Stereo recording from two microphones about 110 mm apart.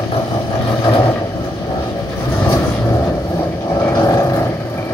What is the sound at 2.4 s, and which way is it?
Vehicle, 25° left (ahead or behind).